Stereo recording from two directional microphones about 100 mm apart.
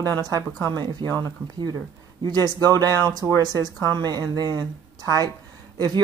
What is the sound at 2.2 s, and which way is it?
Speech, 45° right (ahead or behind).